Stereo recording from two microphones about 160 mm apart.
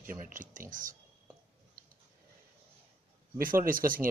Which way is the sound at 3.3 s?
60° right (ahead or behind).